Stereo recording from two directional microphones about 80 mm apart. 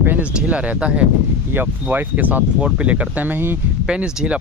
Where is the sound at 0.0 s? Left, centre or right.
Centre.